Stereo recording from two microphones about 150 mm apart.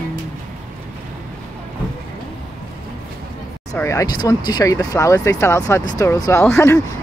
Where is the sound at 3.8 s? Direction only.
20° left (ahead or behind).